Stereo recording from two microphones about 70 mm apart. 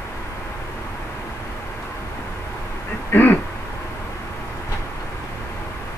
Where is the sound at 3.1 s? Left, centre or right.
Left.